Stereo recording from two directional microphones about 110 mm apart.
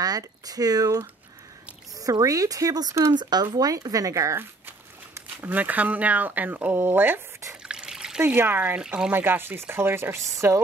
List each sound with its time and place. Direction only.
0.0 s speech: 35° right (ahead or behind); by 7.5 s 20° right (ahead or behind)
7.6 s trickle: 5° right (ahead or behind)
8.2 s speech: 20° right (ahead or behind)
9.1 s speech: 20° right (ahead or behind)